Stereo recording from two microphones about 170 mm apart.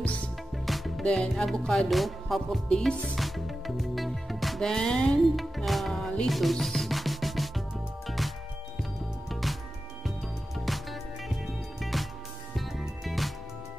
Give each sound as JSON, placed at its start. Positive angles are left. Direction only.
{"t": 0.0, "sound": "music", "side_deg": 10}
{"t": 9.3, "sound": "music", "side_deg": 0}
{"t": 10.6, "sound": "music", "side_deg": 0}